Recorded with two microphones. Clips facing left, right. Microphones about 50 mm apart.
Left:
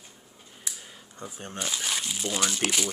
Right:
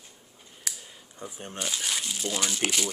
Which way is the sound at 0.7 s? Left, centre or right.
Right.